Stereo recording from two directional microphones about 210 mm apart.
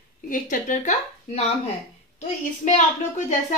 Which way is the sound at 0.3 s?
40° left (ahead or behind).